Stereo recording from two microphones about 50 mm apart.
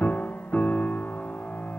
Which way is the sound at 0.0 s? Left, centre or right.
Left.